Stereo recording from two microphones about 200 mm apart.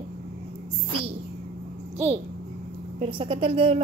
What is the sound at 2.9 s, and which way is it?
Speech, 25° right (ahead or behind).